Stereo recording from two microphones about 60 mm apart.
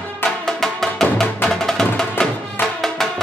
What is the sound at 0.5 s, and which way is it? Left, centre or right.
Music, centre.